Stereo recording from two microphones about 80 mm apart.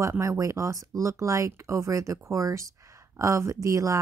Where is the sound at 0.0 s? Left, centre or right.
Right.